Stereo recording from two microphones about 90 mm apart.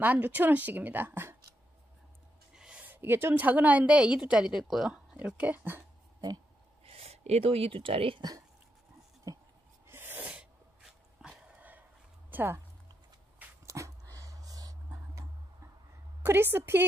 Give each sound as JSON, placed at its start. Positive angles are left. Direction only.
{"t": 0.0, "sound": "speech", "side_deg": -20}
{"t": 2.5, "sound": "a sound", "side_deg": -10}
{"t": 2.9, "sound": "a woman's voice", "side_deg": -25}
{"t": 5.1, "sound": "speech", "side_deg": -15}
{"t": 6.8, "sound": "speech", "side_deg": -90}
{"t": 8.2, "sound": "speech", "side_deg": -45}
{"t": 9.8, "sound": "sneeze", "side_deg": -25}
{"t": 11.2, "sound": "a sound", "side_deg": -5}
{"t": 12.3, "sound": "speech", "side_deg": -25}
{"t": 13.7, "sound": "dog", "side_deg": -35}
{"t": 16.2, "sound": "speech", "side_deg": -25}